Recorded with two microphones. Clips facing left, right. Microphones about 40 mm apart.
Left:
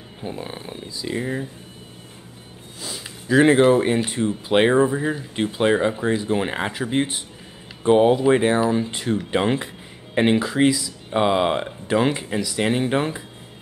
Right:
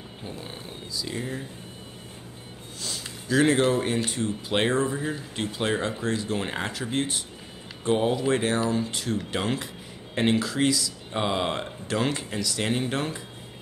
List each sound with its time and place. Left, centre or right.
0.2 s speech: left
2.8 s speech: centre